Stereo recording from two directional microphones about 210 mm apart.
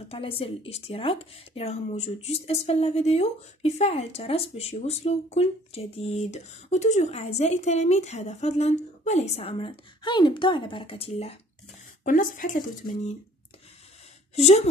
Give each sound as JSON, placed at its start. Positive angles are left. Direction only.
{"t": 0.1, "sound": "speech", "side_deg": 25}
{"t": 12.0, "sound": "speech", "side_deg": 40}
{"t": 14.3, "sound": "speech", "side_deg": 30}